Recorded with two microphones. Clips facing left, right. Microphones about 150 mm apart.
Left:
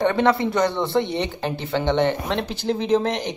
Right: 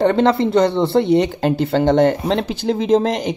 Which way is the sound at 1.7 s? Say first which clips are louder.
Right 5 dB; 40° right (ahead or behind).